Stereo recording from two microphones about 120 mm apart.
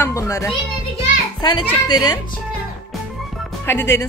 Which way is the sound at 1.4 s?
40° left (ahead or behind).